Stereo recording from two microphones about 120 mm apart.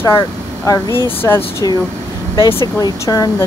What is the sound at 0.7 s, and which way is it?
Speech, 30° left (ahead or behind).